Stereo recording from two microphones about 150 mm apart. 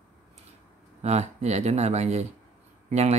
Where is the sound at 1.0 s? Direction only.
45° right (ahead or behind).